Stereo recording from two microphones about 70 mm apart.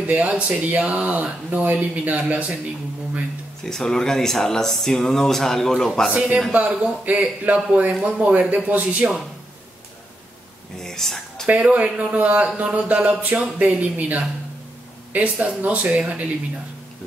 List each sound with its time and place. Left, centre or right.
0.0 s speech: right
3.6 s speech: centre
6.1 s speech: centre
10.8 s a sound: centre
11.6 s speech: centre